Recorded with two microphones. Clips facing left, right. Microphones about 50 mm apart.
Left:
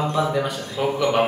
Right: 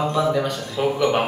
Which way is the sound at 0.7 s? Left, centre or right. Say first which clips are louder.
Right 1 dB; centre.